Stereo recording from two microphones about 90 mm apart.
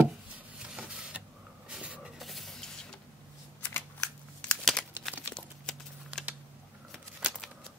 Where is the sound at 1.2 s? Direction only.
10° right (ahead or behind).